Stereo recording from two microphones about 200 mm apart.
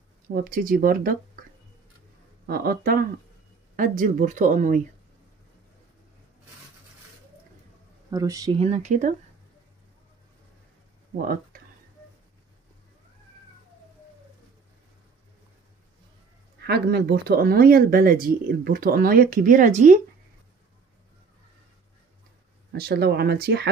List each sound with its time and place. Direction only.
0.3 s speech: 45° right (ahead or behind)
2.4 s speech: 50° right (ahead or behind)
8.1 s speech: 20° right (ahead or behind)
8.5 s speech: 35° right (ahead or behind)
16.6 s speech: 55° right (ahead or behind); by 20.0 s 40° right (ahead or behind)
22.7 s speech: 50° right (ahead or behind)